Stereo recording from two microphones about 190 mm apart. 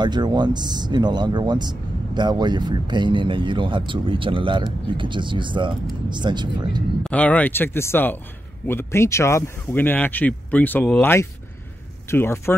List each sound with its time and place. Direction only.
0.0 s speech: 20° right (ahead or behind)
7.0 s speech: 5° left (ahead or behind)